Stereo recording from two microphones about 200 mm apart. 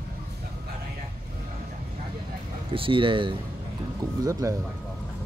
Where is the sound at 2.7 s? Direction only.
25° right (ahead or behind).